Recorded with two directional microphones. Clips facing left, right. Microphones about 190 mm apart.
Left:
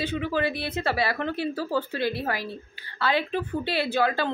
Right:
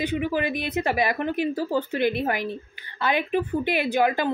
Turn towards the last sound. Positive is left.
turn(degrees=-15)  # may be behind; listen again after turning